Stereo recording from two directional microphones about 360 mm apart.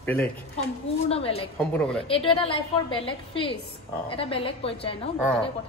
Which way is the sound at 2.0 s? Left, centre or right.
Centre.